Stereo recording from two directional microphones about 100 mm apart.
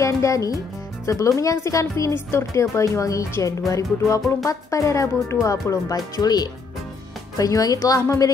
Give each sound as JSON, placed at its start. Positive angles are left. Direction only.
{"t": 0.0, "sound": "speech", "side_deg": 30}